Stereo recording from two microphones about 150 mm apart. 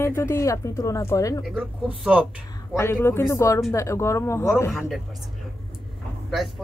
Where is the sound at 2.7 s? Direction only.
20° left (ahead or behind).